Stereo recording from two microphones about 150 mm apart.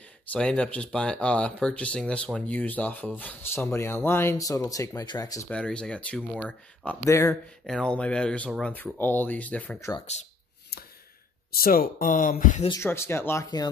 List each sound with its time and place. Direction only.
0.3 s speech: 5° left (ahead or behind); by 5.5 s 25° left (ahead or behind)
5.5 s speech: 5° left (ahead or behind)
7.6 s speech: 5° left (ahead or behind)
11.5 s speech: 85° left; by 12.6 s 60° left (ahead or behind)
12.8 s speech: 15° left (ahead or behind)